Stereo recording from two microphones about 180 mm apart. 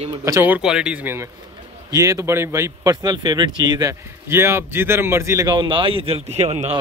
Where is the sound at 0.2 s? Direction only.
15° right (ahead or behind).